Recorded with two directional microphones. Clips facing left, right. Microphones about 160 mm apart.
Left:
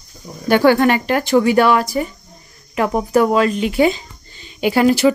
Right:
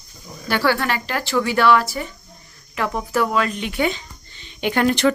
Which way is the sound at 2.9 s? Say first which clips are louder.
Left 7 dB; 35° left (ahead or behind).